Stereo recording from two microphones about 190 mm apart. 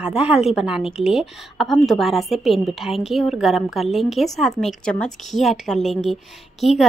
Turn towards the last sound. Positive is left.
turn(degrees=0)  # may be behind; listen again after turning